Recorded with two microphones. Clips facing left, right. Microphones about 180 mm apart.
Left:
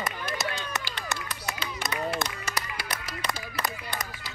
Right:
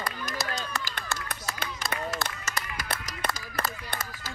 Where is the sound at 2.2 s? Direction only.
50° right (ahead or behind).